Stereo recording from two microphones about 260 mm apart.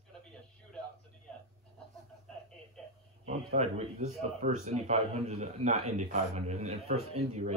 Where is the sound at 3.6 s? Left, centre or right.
Right.